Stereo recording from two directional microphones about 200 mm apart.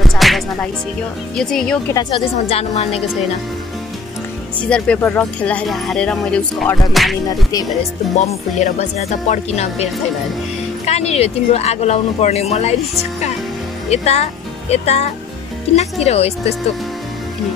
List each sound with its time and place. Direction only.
0.0 s music: centre (ahead or behind)
1.3 s speech: 5° left (ahead or behind)
2.0 s a woman's voice: 25° left (ahead or behind)
4.6 s speech: 5° left (ahead or behind)
8.3 s a woman's voice: 35° left (ahead or behind)
10.9 s a woman's voice: 30° left (ahead or behind)
13.8 s a woman's voice: 30° left (ahead or behind)